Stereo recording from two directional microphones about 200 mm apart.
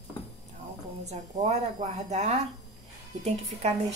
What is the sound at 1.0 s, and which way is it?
A woman's voice, 35° right (ahead or behind).